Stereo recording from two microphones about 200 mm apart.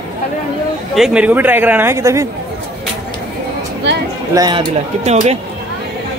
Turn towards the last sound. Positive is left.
turn(degrees=-35)  # may be behind; listen again after turning